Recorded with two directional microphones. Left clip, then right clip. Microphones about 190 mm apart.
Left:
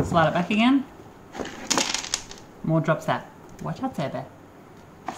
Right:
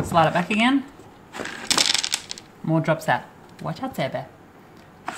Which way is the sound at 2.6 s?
35° right (ahead or behind).